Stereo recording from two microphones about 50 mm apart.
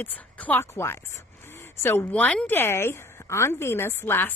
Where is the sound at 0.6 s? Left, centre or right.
Left.